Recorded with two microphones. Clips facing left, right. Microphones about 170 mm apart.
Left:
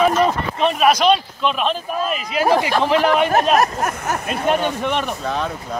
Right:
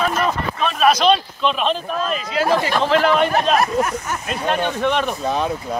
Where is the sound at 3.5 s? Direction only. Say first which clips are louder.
Even; 45° left (ahead or behind).